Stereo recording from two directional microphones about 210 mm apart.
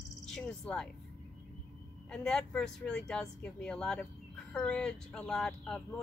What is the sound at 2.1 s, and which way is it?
Speech, 5° left (ahead or behind).